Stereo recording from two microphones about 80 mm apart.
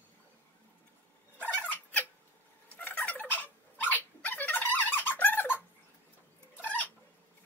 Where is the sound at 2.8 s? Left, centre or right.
Left.